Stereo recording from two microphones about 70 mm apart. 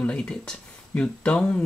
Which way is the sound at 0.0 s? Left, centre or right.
Centre.